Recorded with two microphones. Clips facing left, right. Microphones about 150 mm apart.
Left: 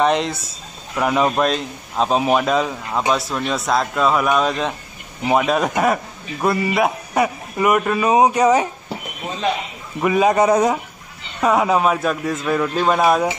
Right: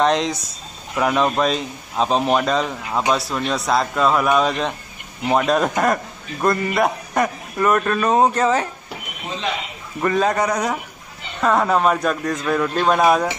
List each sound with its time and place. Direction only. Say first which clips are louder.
0.0 s a man's voice: even; 5° left (ahead or behind)
10.0 s a man's voice: left 3 dB; 10° left (ahead or behind)
10.4 s speech: left 6 dB; 25° left (ahead or behind)
11.4 s a man's voice: left 1 dB; 10° left (ahead or behind)